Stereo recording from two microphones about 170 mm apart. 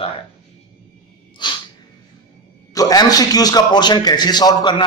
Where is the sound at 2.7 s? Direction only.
20° left (ahead or behind).